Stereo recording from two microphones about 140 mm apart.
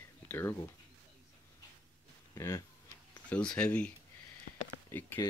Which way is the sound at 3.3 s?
10° left (ahead or behind).